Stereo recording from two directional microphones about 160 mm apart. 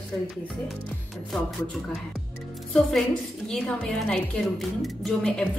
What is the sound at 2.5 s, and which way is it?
Music, centre (ahead or behind).